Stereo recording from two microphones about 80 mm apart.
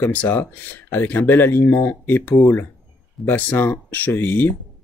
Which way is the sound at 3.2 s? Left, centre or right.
Left.